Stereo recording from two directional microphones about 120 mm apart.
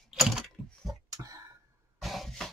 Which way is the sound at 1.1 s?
30° right (ahead or behind).